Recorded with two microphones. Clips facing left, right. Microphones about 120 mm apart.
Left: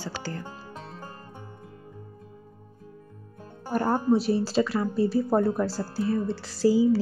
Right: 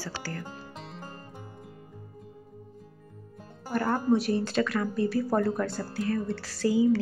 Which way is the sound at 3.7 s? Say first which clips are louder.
Left 2 dB; 40° left (ahead or behind).